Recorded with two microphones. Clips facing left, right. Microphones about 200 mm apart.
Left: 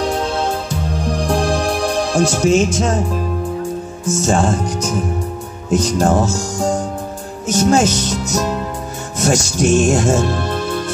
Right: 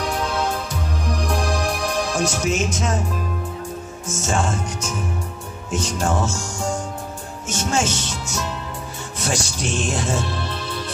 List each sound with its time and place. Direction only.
0.0 s music: 30° left (ahead or behind)
4.0 s music: 35° left (ahead or behind)
9.2 s speech: 45° left (ahead or behind)